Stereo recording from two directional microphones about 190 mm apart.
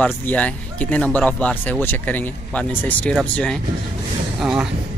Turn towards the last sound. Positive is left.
turn(degrees=-5)  # may be behind; listen again after turning